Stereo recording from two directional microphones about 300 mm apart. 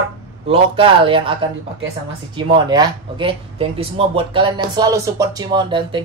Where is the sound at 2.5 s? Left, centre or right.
Centre.